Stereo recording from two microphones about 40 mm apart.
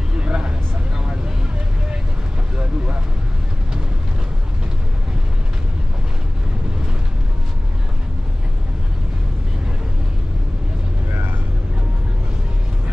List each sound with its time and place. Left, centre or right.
0.2 s vehicle: right